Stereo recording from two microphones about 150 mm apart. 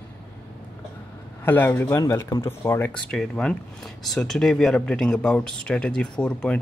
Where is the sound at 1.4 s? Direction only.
15° left (ahead or behind).